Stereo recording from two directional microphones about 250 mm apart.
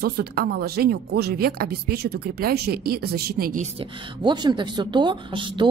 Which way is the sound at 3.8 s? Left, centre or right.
Centre.